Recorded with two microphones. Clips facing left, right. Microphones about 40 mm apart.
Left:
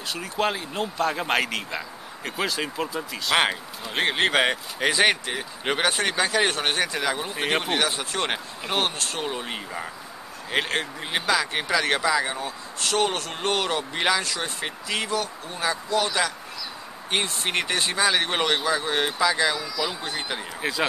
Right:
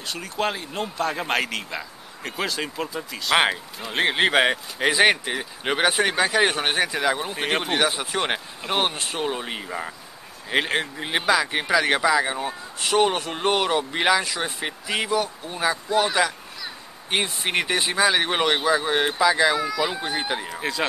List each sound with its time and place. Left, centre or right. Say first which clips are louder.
0.1 s speech: even; centre; by 16.2 s right
17.1 s speech: right 2 dB; centre
19.5 s speech: right 6 dB; right
19.8 s speech: right 3 dB; centre
20.3 s speech: right 1 dB; centre